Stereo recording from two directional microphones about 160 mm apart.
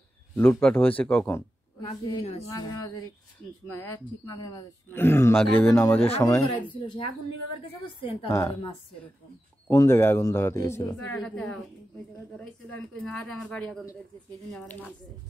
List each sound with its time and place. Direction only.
0.4 s speech: 10° left (ahead or behind)
3.6 s speech: 15° left (ahead or behind)
5.9 s speech: 40° left (ahead or behind)
8.3 s speech: 15° left (ahead or behind)
9.7 s speech: 15° left (ahead or behind)
11.2 s a woman's voice: 5° left (ahead or behind)